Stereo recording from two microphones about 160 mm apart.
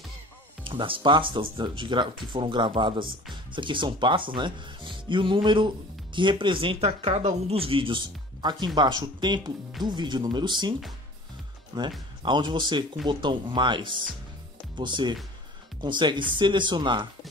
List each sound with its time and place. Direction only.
0.7 s speech: 30° right (ahead or behind)
11.7 s speech: 25° right (ahead or behind)